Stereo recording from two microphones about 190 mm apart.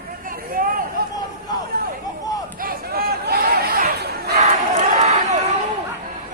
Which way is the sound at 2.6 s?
50° right (ahead or behind).